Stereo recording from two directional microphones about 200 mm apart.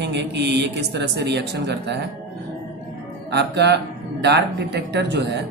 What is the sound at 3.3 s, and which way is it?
A man's voice, 55° right (ahead or behind).